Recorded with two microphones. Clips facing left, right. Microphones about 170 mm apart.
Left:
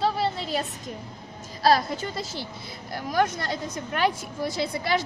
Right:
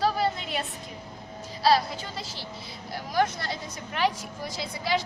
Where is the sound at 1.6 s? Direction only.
50° left (ahead or behind).